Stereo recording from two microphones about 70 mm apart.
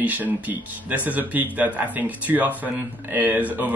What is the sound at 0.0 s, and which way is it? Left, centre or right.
Speech, right.